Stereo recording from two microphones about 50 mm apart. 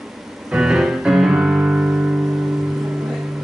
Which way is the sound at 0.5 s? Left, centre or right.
Centre.